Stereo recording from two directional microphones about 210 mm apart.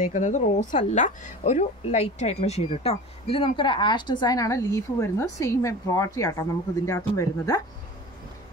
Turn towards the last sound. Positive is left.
turn(degrees=15)  # may be behind; listen again after turning